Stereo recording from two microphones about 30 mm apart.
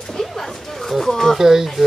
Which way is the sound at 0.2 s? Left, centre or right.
Centre.